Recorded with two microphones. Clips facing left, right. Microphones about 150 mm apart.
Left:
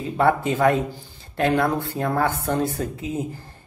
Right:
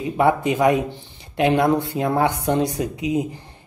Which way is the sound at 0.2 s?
15° right (ahead or behind).